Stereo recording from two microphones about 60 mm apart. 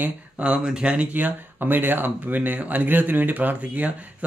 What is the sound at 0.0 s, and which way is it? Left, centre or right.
Speech, right.